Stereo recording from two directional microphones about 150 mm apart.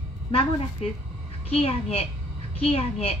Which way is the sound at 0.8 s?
45° left (ahead or behind).